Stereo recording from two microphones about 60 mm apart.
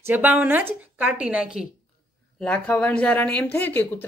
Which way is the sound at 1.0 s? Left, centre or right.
Centre.